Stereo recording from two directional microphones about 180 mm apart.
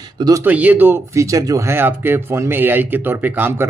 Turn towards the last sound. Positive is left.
turn(degrees=-10)  # may be behind; listen again after turning